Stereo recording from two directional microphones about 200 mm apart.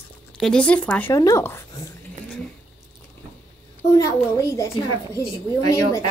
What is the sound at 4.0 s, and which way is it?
Speech, 15° left (ahead or behind).